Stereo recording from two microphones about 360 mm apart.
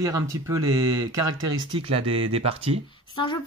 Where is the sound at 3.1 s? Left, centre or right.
Centre.